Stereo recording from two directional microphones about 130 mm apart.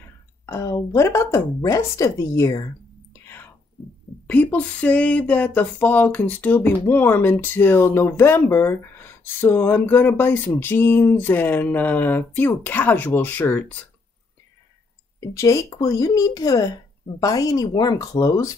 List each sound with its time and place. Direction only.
0.5 s speech: 25° left (ahead or behind)
3.1 s whispering: 15° left (ahead or behind)
4.3 s speech: 10° left (ahead or behind)
15.1 s speech: 25° left (ahead or behind)